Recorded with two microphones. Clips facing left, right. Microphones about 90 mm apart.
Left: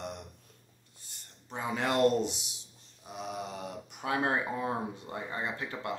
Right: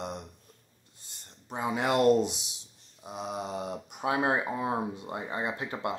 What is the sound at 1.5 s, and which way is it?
Speech, 15° right (ahead or behind).